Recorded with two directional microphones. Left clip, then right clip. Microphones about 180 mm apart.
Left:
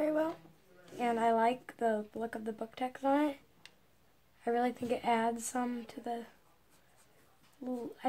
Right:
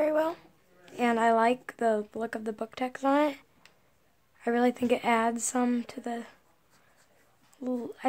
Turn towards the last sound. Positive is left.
turn(degrees=-45)  # may be behind; listen again after turning